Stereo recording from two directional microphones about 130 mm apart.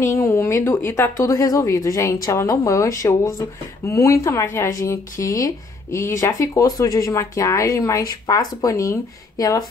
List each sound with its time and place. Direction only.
0.0 s speech: 20° left (ahead or behind)